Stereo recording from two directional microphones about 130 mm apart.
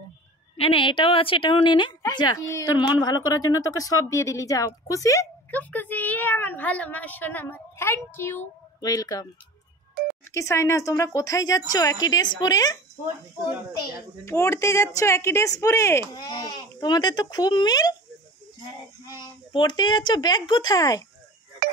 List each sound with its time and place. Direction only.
0.6 s a woman's voice: 45° left (ahead or behind); by 5.3 s 25° left (ahead or behind)
5.5 s a woman's voice: 15° left (ahead or behind)
8.8 s speech: 30° left (ahead or behind)
10.3 s speech: 20° left (ahead or behind)
14.2 s a woman's voice: 20° left (ahead or behind)
19.5 s a woman's voice: 35° left (ahead or behind)